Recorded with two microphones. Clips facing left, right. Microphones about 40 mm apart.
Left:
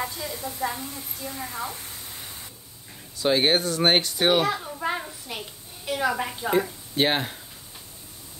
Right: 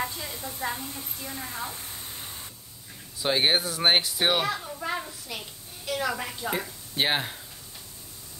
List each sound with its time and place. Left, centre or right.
0.3 s a woman's voice: left
0.9 s a woman's voice: right
1.4 s a woman's voice: left
3.2 s speech: centre
4.5 s a child's voice: centre
4.8 s a sound: centre
6.5 s speech: centre